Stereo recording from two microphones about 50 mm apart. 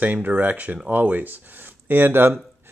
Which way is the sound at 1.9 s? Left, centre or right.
Right.